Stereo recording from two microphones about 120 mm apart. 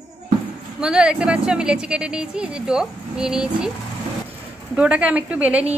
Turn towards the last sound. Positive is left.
turn(degrees=-10)  # may be behind; listen again after turning